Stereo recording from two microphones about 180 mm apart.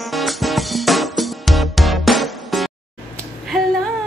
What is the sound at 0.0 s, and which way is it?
Music, centre (ahead or behind).